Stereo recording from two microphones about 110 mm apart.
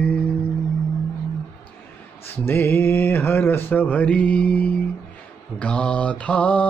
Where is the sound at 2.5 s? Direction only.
20° left (ahead or behind).